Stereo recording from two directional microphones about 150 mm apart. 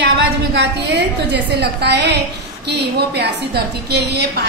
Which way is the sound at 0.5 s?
90° right.